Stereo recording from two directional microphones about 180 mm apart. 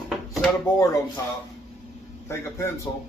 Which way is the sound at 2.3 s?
15° left (ahead or behind).